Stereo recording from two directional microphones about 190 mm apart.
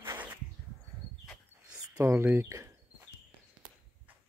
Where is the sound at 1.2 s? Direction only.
5° left (ahead or behind).